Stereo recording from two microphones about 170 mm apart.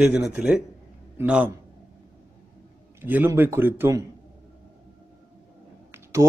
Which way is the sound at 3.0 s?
10° right (ahead or behind).